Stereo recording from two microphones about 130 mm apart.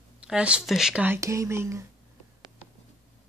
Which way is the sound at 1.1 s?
20° right (ahead or behind).